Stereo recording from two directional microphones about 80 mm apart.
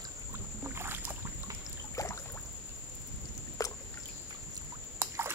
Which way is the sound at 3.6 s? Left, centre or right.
Left.